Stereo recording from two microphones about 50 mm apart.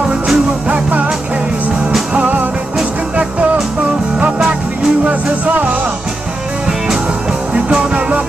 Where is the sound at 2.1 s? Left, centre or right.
Right.